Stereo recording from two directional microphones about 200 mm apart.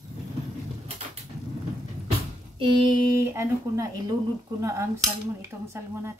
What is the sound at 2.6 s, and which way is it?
Cutlery, 15° right (ahead or behind).